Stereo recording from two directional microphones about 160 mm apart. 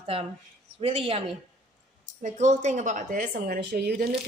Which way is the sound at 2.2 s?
50° right (ahead or behind).